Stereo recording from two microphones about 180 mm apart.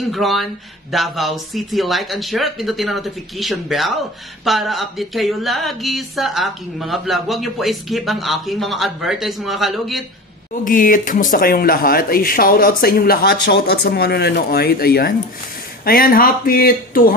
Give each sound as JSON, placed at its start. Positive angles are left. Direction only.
{"t": 0.0, "sound": "speech", "side_deg": 0}
{"t": 10.5, "sound": "speech", "side_deg": 50}